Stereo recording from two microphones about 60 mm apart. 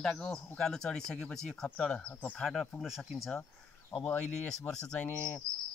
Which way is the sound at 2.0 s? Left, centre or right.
Left.